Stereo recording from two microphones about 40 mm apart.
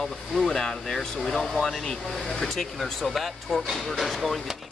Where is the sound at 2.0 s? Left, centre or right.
Centre.